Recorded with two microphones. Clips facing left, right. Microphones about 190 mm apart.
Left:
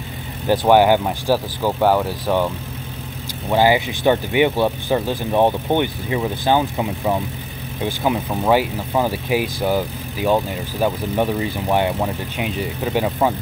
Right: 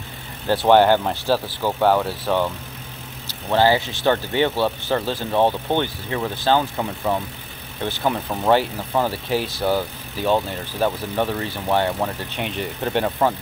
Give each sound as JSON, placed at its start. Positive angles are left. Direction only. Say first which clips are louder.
{"t": 0.5, "sound": "speech", "louder": "left 1 dB", "side_deg": 10}